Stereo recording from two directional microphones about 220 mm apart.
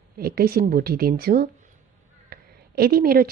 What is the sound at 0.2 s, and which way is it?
Speech, 45° right (ahead or behind).